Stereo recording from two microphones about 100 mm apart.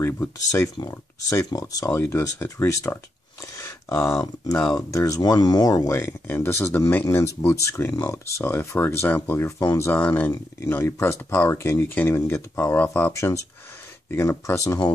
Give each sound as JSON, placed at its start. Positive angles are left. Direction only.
{"t": 0.0, "sound": "speech", "side_deg": 25}
{"t": 9.9, "sound": "speech", "side_deg": 15}